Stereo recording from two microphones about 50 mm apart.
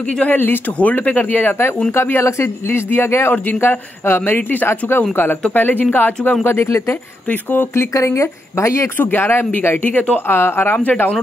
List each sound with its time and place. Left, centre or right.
0.2 s speech: left
0.7 s speech: left
1.9 s speech: left
2.2 s a man's voice: left
4.4 s speech: left
4.6 s speech: left
6.4 s speech: left
7.7 s speech: left
8.9 s speech: left
9.8 s speech: left
10.2 s speech: left
10.9 s speech: left